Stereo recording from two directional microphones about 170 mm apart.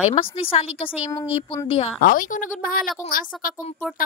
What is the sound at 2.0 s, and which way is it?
Speech, 55° left (ahead or behind).